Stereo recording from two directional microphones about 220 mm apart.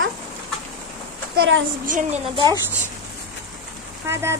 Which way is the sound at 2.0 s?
30° right (ahead or behind).